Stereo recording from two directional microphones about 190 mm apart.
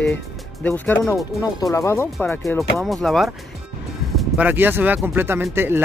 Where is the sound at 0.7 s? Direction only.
10° left (ahead or behind).